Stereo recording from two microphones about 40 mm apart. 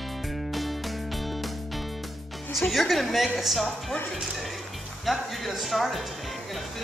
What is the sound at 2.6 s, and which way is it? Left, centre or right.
Speech, centre.